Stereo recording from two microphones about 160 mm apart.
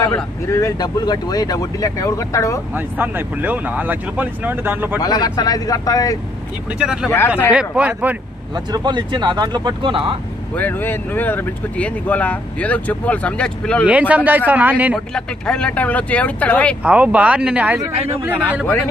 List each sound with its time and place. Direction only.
0.0 s speech: 15° left (ahead or behind)
2.7 s speech: 10° right (ahead or behind)
4.9 s speech: 25° left (ahead or behind)
6.8 s speech: 5° right (ahead or behind)
8.5 s speech: 25° right (ahead or behind)
10.5 s speech: 10° left (ahead or behind)
13.8 s speech: 10° right (ahead or behind)
15.0 s speech: 5° left (ahead or behind)
16.8 s speech: 10° right (ahead or behind)
17.9 s speech: 40° right (ahead or behind)
18.2 s speech: 10° right (ahead or behind)